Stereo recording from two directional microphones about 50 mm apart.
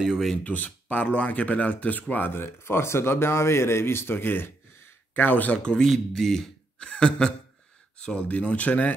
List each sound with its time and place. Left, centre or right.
0.4 s speech: left
2.3 s speech: left
5.6 s a man's voice: centre